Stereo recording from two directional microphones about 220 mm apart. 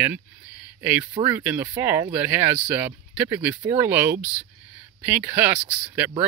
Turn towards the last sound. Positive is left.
turn(degrees=-10)  # may be behind; listen again after turning